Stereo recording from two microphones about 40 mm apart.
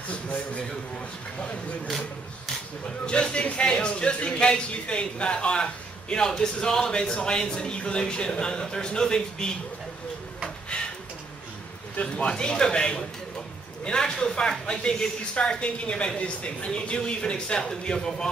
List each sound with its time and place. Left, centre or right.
0.1 s a man's voice: left
3.1 s a man's voice: left
12.3 s a man's voice: left